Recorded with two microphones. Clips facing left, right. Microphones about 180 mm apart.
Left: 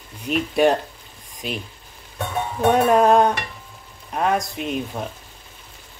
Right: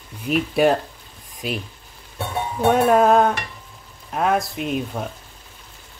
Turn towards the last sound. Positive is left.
turn(degrees=0)  # may be behind; listen again after turning